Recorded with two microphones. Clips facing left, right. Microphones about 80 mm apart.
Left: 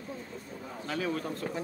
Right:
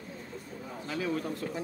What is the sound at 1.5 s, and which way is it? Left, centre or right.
Speech, left.